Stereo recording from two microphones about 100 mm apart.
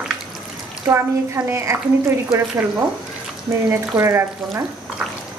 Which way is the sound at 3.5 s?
30° right (ahead or behind).